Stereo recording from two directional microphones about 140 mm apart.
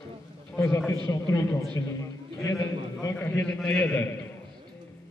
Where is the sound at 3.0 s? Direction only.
20° left (ahead or behind).